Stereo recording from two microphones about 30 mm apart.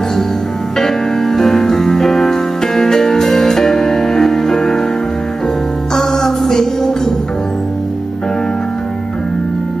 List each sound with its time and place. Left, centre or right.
0.7 s music: centre
5.9 s music: centre